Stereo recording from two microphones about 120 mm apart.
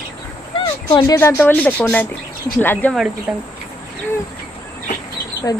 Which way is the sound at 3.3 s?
15° right (ahead or behind).